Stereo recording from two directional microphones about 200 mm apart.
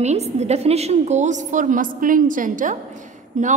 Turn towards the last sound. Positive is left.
turn(degrees=-35)  # may be behind; listen again after turning